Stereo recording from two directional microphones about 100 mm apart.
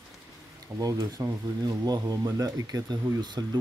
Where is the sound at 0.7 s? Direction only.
35° right (ahead or behind).